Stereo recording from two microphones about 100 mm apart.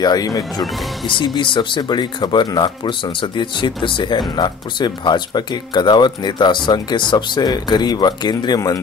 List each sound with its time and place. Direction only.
0.0 s speech: 40° left (ahead or behind)
1.0 s speech: 50° left (ahead or behind)